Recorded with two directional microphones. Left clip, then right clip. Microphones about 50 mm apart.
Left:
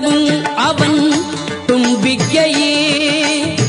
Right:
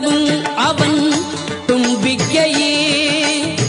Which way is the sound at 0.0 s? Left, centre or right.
Left.